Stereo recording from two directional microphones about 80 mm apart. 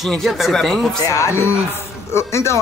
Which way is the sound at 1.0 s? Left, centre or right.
Left.